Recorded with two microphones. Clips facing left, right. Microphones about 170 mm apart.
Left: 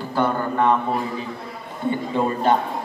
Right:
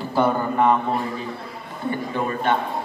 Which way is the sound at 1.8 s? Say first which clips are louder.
Left 3 dB; 30° left (ahead or behind).